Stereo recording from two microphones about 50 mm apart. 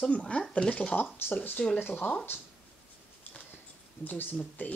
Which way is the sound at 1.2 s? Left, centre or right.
Left.